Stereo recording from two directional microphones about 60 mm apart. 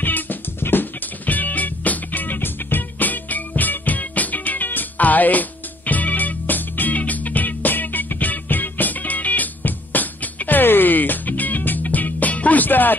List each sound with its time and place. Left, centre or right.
0.0 s music: left